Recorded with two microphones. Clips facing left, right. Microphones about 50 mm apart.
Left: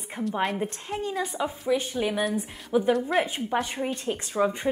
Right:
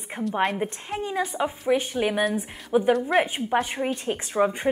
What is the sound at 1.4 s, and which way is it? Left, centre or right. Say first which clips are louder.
A woman's voice: right 3 dB; right.